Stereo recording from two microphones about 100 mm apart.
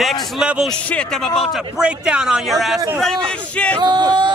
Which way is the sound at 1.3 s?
5° right (ahead or behind).